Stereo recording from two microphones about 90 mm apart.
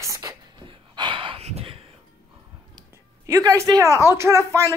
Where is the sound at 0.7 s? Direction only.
65° right (ahead or behind); by 1.8 s 90° right.